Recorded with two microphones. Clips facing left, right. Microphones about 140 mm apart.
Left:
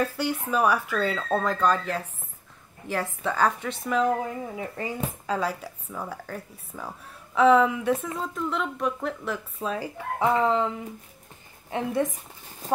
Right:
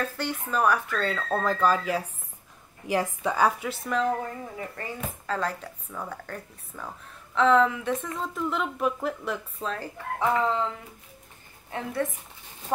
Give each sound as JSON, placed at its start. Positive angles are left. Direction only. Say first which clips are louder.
{"t": 0.0, "sound": "a woman's voice", "louder": "left 4 dB", "side_deg": 10}
{"t": 8.2, "sound": "a woman's voice", "louder": "even", "side_deg": 0}
{"t": 11.7, "sound": "a woman's voice", "louder": "left 4 dB", "side_deg": 20}